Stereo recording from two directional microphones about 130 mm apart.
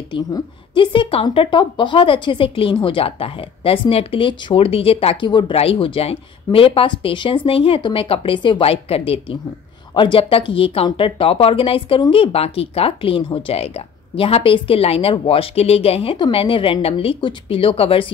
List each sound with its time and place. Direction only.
0.1 s a woman's voice: 35° left (ahead or behind)
5.5 s speech: 50° left (ahead or behind)